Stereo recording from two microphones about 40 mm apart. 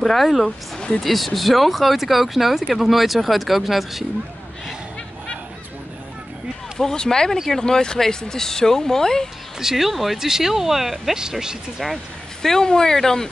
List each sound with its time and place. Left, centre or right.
0.0 s speech: centre
6.8 s speech: centre
9.6 s speech: centre
11.1 s speech: centre
12.4 s speech: centre